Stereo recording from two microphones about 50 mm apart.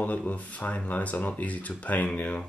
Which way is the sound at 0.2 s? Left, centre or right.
Left.